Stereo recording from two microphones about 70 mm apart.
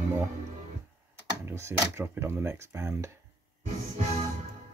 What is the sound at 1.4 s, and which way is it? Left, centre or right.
Speech, right.